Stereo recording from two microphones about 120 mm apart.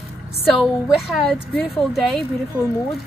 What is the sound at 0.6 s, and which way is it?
Speech, 5° right (ahead or behind).